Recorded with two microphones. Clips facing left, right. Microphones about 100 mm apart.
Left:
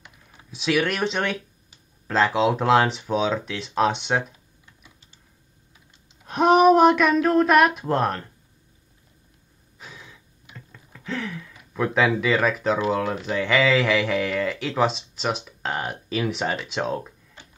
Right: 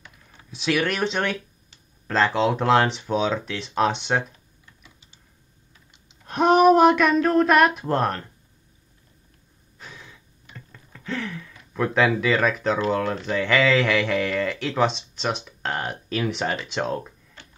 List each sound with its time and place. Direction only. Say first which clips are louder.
0.0 s typing: even; 15° left (ahead or behind)
0.5 s speech: left 1 dB; centre (ahead or behind)
6.2 s speech: even; centre (ahead or behind)
9.8 s gasp: even; 5° left (ahead or behind)
10.5 s a sound: even; 5° left (ahead or behind)
11.5 s speech: even; 5° left (ahead or behind)